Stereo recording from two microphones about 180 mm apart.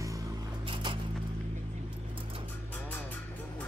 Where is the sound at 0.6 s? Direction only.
25° right (ahead or behind).